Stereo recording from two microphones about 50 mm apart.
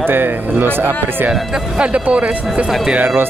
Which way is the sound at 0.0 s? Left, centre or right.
Right.